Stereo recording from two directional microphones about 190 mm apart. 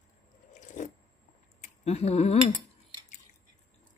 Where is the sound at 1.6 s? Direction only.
35° left (ahead or behind).